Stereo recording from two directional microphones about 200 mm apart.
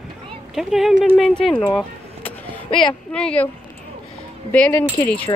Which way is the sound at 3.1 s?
5° left (ahead or behind).